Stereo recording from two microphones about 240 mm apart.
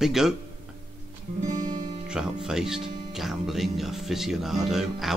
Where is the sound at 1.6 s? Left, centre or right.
Centre.